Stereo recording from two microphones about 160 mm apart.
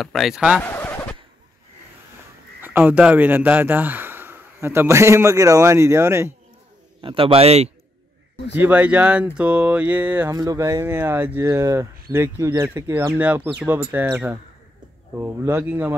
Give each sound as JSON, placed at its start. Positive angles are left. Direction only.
{"t": 0.0, "sound": "speech", "side_deg": 0}
{"t": 0.6, "sound": "a sound", "side_deg": 10}
{"t": 2.6, "sound": "speech", "side_deg": -10}
{"t": 7.0, "sound": "a man's voice", "side_deg": -35}
{"t": 8.5, "sound": "speech", "side_deg": -10}
{"t": 10.3, "sound": "speech", "side_deg": -20}